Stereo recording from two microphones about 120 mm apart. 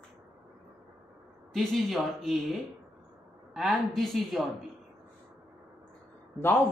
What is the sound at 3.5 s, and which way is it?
Speech, centre (ahead or behind).